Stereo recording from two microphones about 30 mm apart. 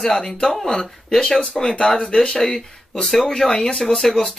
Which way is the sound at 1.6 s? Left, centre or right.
Left.